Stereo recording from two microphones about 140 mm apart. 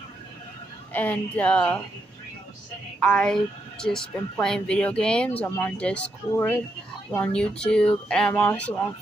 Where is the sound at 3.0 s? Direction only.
5° left (ahead or behind).